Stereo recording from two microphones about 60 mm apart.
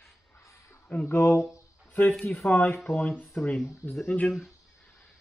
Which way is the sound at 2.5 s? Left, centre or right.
Left.